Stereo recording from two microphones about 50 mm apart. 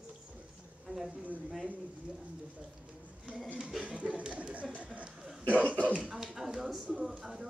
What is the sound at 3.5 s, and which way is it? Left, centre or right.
Speech, centre.